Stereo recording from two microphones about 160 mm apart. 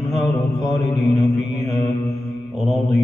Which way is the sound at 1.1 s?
Centre (ahead or behind).